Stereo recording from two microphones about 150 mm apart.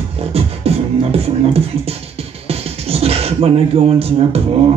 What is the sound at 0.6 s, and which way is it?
Beatboxing, 40° right (ahead or behind).